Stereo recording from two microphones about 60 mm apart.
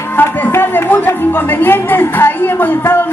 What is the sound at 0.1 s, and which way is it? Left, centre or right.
Music, left.